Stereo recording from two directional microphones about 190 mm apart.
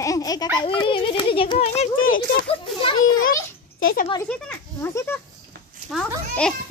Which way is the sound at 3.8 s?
50° left (ahead or behind).